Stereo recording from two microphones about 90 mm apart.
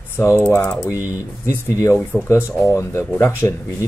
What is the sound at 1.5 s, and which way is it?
Speech, 30° left (ahead or behind).